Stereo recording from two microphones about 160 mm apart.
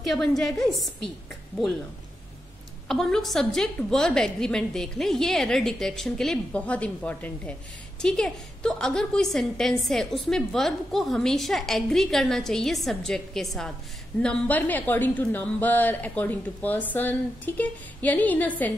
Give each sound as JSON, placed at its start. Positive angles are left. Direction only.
{"t": 0.0, "sound": "a woman's voice", "side_deg": 0}
{"t": 2.9, "sound": "a woman's voice", "side_deg": 0}